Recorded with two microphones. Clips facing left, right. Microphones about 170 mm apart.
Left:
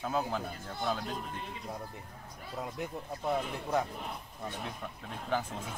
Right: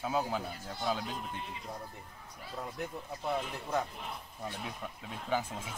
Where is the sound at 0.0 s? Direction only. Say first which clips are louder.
Even; 5° right (ahead or behind).